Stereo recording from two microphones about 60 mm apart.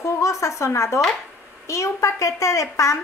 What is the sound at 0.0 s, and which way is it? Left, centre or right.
A woman's voice, left.